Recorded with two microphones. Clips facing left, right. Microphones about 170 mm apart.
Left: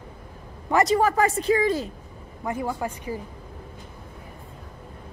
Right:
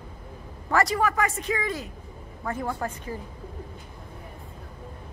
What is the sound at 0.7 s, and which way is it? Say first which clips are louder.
A woman's voice: left 4 dB; 20° left (ahead or behind).